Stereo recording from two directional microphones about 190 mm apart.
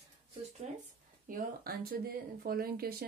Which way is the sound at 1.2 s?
50° right (ahead or behind).